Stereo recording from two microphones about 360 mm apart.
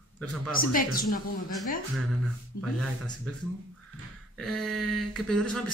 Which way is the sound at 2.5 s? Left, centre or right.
Left.